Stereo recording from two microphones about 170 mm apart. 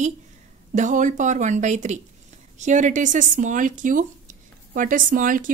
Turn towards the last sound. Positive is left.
turn(degrees=-50)  # may be behind; listen again after turning